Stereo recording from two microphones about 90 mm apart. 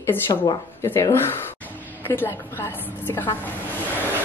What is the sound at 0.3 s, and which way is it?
Speech, 75° left (ahead or behind).